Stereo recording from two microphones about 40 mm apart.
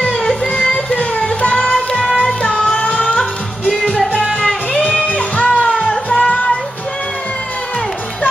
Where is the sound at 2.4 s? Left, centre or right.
Left.